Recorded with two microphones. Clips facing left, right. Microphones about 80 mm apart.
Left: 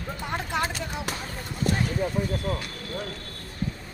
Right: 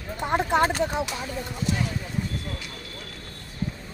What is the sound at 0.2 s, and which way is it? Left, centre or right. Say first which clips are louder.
Speech: right 8 dB; right.